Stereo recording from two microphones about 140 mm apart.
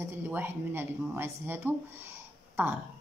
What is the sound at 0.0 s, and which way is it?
Speech, 15° right (ahead or behind).